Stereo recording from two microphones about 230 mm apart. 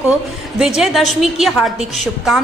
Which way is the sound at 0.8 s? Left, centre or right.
Centre.